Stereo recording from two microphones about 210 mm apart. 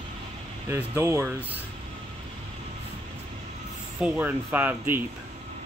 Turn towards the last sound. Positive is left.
turn(degrees=-10)  # may be behind; listen again after turning